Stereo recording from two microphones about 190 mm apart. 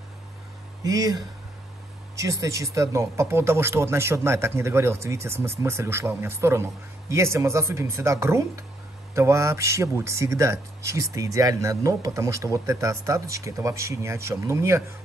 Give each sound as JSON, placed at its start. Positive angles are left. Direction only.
{"t": 0.8, "sound": "speech", "side_deg": -20}